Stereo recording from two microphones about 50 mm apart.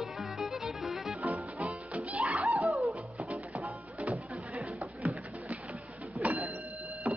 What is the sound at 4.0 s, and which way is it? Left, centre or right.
Music, right.